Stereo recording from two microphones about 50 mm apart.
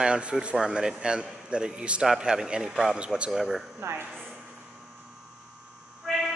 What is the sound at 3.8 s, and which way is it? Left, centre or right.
Speech, right.